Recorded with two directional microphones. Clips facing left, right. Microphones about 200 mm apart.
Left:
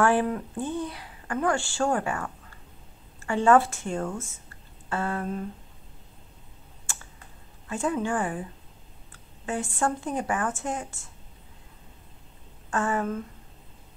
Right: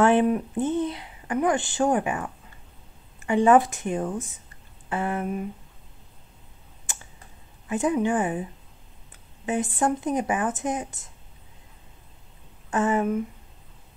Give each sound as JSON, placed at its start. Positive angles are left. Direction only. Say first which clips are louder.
{"t": 0.0, "sound": "a woman's voice", "louder": "right 4 dB", "side_deg": -20}
{"t": 6.9, "sound": "computer keyboard", "louder": "right 1 dB", "side_deg": -20}
{"t": 7.6, "sound": "speech", "louder": "right 4 dB", "side_deg": -20}
{"t": 9.1, "sound": "a sound", "louder": "right 4 dB", "side_deg": -20}
{"t": 9.8, "sound": "speech", "louder": "right 3 dB", "side_deg": -20}
{"t": 12.6, "sound": "speech", "louder": "right 4 dB", "side_deg": -20}